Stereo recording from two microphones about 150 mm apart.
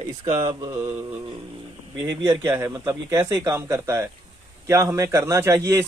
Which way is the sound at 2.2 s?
15° right (ahead or behind).